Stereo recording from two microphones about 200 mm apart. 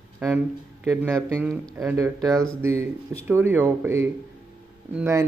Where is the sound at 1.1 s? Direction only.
5° left (ahead or behind).